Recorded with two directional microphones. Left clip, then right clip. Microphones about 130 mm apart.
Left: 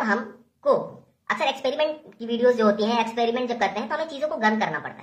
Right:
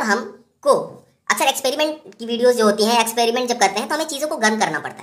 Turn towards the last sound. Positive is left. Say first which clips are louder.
# right 5 dB
turn(degrees=-25)  # may be behind; listen again after turning